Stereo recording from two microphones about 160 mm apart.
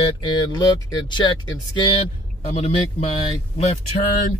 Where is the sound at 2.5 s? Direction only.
40° left (ahead or behind).